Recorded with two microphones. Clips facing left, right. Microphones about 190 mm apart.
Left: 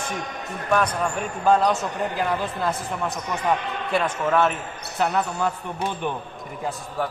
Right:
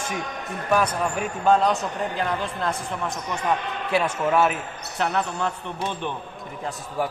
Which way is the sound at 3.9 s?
5° right (ahead or behind).